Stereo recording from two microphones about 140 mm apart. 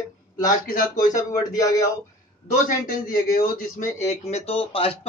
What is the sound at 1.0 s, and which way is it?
Speech, 25° left (ahead or behind).